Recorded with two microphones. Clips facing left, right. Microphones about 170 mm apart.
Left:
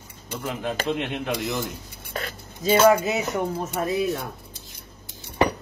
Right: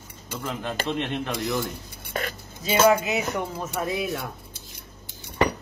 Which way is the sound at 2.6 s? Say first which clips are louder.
Left 2 dB; 40° left (ahead or behind).